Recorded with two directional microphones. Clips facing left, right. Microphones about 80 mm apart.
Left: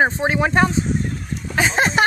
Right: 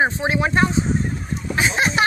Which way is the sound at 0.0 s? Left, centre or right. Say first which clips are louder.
Left 2 dB; left.